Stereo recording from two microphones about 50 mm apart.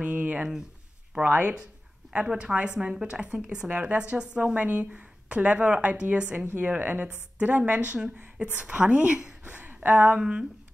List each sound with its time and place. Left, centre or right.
0.0 s a woman's voice: right
2.1 s a woman's voice: right
9.4 s a sound: right
9.8 s a woman's voice: right